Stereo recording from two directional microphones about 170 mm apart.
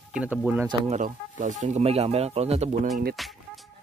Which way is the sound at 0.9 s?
50° right (ahead or behind).